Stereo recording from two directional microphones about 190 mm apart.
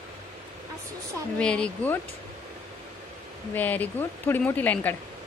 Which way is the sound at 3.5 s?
10° left (ahead or behind).